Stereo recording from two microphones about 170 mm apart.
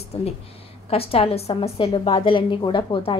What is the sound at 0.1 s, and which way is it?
A woman's voice, 35° left (ahead or behind).